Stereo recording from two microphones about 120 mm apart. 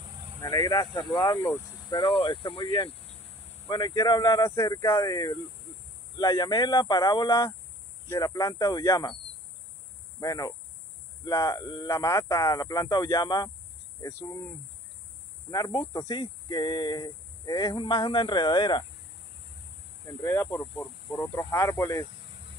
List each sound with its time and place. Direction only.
0.4 s speech: 25° left (ahead or behind); by 2.9 s 45° left (ahead or behind)
3.6 s speech: 30° left (ahead or behind)
10.2 s speech: 30° left (ahead or behind)
15.5 s speech: 35° left (ahead or behind)
20.2 s speech: 25° left (ahead or behind)